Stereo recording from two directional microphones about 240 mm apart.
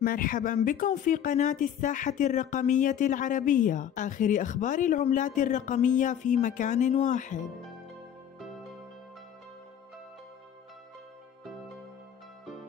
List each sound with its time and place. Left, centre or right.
0.0 s speech: left